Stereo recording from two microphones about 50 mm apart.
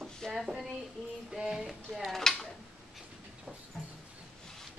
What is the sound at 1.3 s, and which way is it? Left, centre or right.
Music, centre.